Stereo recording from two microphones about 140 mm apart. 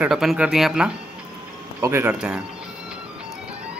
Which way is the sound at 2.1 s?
5° right (ahead or behind).